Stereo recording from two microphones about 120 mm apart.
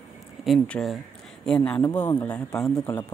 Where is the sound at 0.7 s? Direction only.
5° left (ahead or behind).